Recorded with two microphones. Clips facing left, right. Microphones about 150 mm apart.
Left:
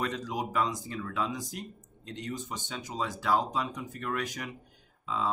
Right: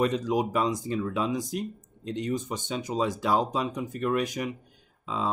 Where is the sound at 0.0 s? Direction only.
20° right (ahead or behind).